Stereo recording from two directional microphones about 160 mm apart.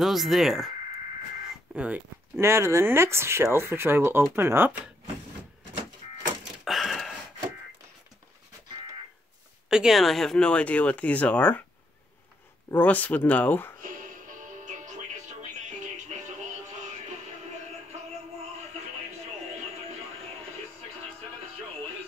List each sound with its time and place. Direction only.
0.0 s speech: centre (ahead or behind)
1.7 s speech: 5° right (ahead or behind)
6.6 s a sound: centre (ahead or behind)
9.7 s speech: 5° right (ahead or behind)
12.7 s speech: 10° left (ahead or behind)
13.7 s music: 60° right (ahead or behind)